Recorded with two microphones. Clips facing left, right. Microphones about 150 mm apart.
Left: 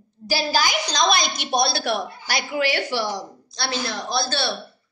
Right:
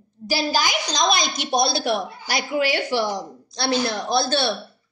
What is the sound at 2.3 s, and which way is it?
Speech, 20° right (ahead or behind).